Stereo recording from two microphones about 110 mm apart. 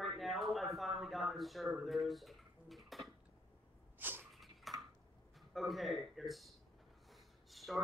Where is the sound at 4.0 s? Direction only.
20° right (ahead or behind).